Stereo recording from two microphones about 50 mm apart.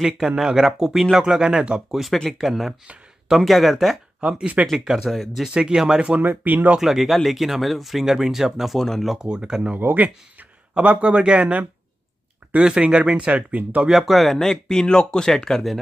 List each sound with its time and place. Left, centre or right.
0.4 s speech: centre
1.9 s speech: centre
4.2 s speech: centre
5.5 s speech: centre
6.2 s speech: right
6.8 s speech: centre
9.8 s speech: right
10.7 s speech: right
12.6 s speech: centre
13.5 s speech: right
13.8 s speech: centre